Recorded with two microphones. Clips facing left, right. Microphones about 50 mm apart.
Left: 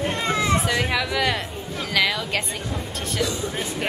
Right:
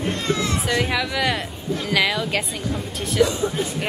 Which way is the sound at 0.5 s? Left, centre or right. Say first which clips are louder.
Even; centre.